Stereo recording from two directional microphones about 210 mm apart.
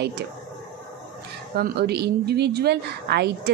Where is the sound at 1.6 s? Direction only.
50° right (ahead or behind).